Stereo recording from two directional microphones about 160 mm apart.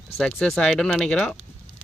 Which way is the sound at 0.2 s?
5° left (ahead or behind).